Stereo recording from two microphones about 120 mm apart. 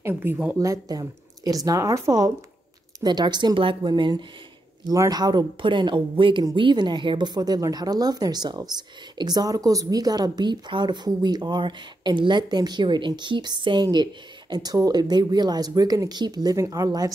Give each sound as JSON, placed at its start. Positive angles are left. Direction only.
{"t": 0.0, "sound": "speech", "side_deg": -20}
{"t": 0.6, "sound": "speech", "side_deg": -30}